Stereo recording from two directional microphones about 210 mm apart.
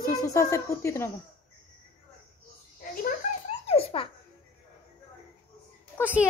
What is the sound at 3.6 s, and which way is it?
Baby laughter, 25° left (ahead or behind).